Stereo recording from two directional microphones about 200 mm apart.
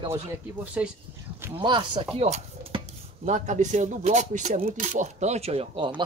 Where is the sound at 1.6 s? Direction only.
25° right (ahead or behind).